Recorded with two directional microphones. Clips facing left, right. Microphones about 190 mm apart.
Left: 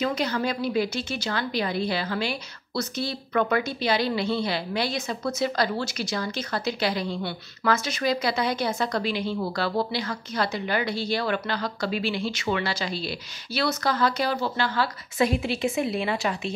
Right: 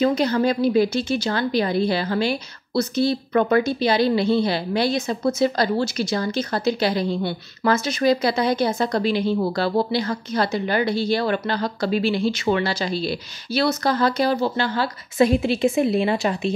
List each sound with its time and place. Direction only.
0.0 s a woman's voice: 35° right (ahead or behind)